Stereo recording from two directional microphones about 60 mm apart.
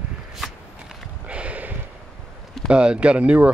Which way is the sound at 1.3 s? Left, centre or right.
Right.